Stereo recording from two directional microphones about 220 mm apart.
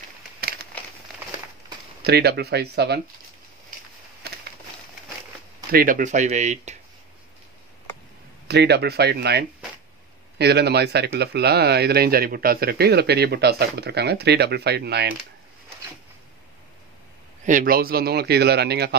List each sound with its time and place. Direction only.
2.0 s speech: 45° right (ahead or behind)
4.2 s a sound: 45° right (ahead or behind)
5.7 s speech: 40° right (ahead or behind)
8.5 s speech: 50° right (ahead or behind)
17.5 s speech: 40° right (ahead or behind)